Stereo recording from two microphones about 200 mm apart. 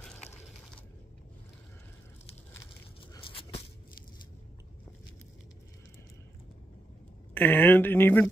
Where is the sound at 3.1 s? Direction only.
25° left (ahead or behind).